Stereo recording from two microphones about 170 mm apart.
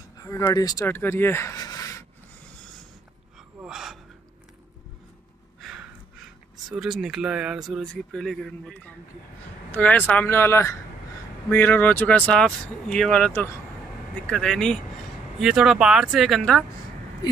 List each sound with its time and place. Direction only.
0.2 s speech: 15° left (ahead or behind)
3.3 s gasp: 5° right (ahead or behind)
6.7 s speech: 5° right (ahead or behind)